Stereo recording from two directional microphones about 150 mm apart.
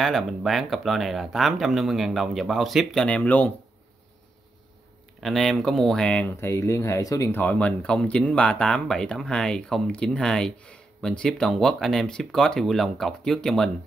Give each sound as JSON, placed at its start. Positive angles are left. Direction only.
{"t": 0.0, "sound": "speech", "side_deg": 0}
{"t": 5.2, "sound": "speech", "side_deg": 0}